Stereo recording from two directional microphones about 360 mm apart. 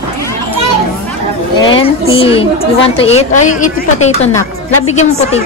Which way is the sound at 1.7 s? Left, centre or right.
Centre.